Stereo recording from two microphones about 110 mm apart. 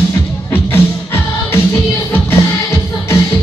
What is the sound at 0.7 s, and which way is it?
Music, 20° left (ahead or behind).